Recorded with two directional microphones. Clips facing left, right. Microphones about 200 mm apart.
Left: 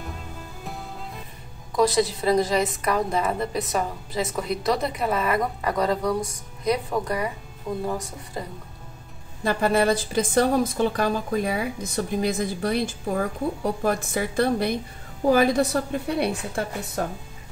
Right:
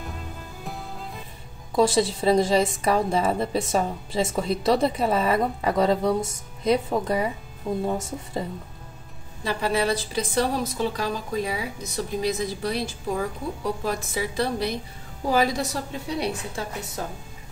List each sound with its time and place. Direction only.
0.0 s music: centre (ahead or behind)
1.8 s a woman's voice: 25° right (ahead or behind)
9.4 s a woman's voice: 50° left (ahead or behind)